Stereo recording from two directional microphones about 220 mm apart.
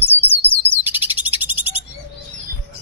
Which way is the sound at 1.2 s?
10° right (ahead or behind).